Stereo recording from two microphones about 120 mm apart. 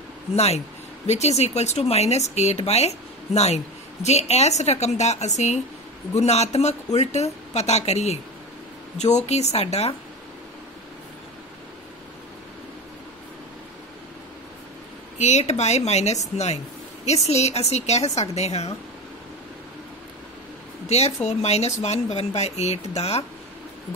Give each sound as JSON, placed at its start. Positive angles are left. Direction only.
{"t": 1.0, "sound": "speech", "side_deg": 65}
{"t": 15.1, "sound": "speech", "side_deg": 70}
{"t": 20.9, "sound": "speech", "side_deg": 65}